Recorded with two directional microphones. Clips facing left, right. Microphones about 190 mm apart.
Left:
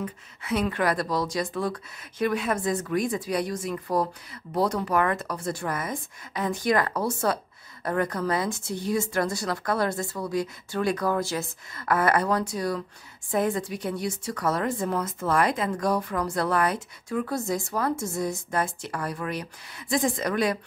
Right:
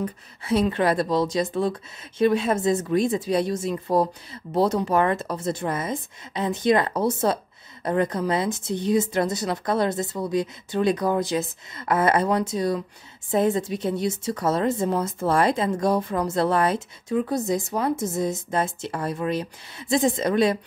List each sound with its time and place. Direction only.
0.0 s speech: 30° right (ahead or behind)